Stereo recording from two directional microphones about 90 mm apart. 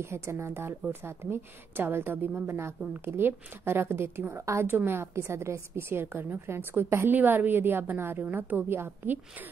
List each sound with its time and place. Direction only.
0.0 s a woman's voice: 30° right (ahead or behind)